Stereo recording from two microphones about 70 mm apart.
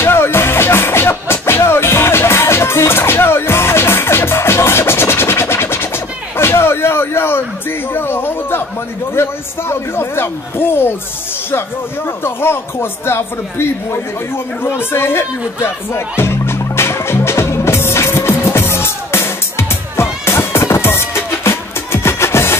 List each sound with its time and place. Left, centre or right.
0.0 s music: left
6.3 s slap: left
7.9 s a sound: left
9.1 s a man's voice: left
12.2 s a man's voice: left
14.6 s music: left